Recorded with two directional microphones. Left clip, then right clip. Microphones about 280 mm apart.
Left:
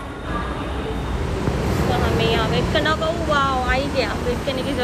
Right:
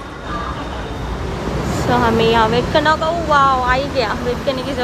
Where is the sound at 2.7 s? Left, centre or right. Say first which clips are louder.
Right 5 dB; centre.